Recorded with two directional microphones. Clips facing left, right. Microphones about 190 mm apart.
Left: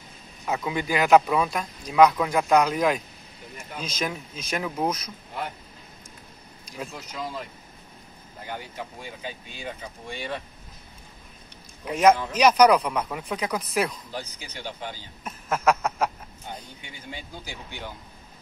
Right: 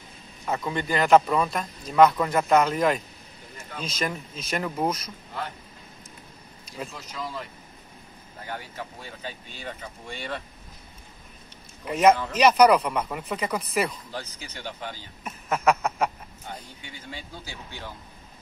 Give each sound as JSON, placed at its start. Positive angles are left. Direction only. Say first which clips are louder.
{"t": 0.5, "sound": "speech", "louder": "left 1 dB", "side_deg": 0}
{"t": 6.9, "sound": "speech", "louder": "left 1 dB", "side_deg": 15}
{"t": 8.5, "sound": "speech", "louder": "left 1 dB", "side_deg": 15}
{"t": 11.8, "sound": "speech", "louder": "even", "side_deg": -5}
{"t": 14.1, "sound": "speech", "louder": "left 1 dB", "side_deg": 10}
{"t": 15.2, "sound": "speech", "louder": "even", "side_deg": 0}
{"t": 17.1, "sound": "speech", "louder": "left 2 dB", "side_deg": 15}